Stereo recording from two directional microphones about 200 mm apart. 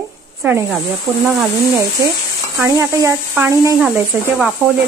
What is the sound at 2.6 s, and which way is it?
Speech, 15° right (ahead or behind).